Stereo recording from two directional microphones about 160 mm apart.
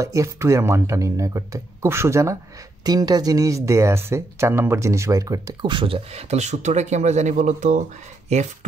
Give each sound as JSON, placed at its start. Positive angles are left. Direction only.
{"t": 0.0, "sound": "speech", "side_deg": -20}